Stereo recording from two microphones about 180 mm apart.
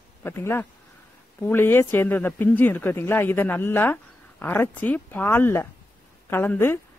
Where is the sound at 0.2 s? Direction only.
10° left (ahead or behind).